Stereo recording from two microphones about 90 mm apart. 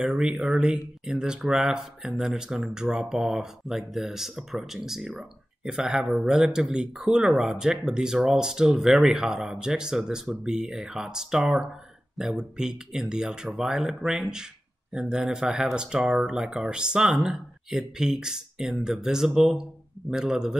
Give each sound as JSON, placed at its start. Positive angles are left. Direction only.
{"t": 0.0, "sound": "a man's voice", "side_deg": -10}